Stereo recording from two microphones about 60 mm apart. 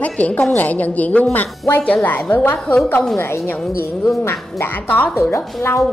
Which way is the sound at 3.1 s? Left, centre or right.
Left.